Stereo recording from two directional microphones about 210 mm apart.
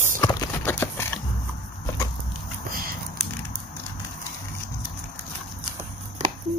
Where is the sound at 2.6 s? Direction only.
45° right (ahead or behind).